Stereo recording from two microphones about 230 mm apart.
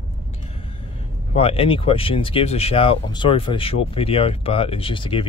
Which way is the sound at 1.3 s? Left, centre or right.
Left.